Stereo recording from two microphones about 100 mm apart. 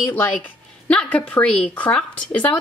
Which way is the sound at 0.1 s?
15° left (ahead or behind).